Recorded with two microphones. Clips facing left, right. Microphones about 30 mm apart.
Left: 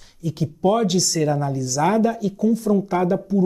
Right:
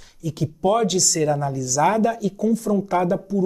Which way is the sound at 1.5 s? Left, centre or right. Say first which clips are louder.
Even; left.